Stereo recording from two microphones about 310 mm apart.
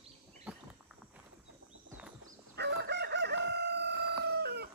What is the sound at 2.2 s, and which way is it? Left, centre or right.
Crowing, right.